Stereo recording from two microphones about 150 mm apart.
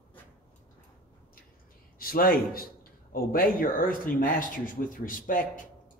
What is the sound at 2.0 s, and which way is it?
Speech, 75° left (ahead or behind).